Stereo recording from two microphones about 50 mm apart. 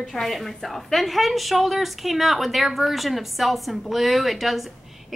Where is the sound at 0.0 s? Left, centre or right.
Centre.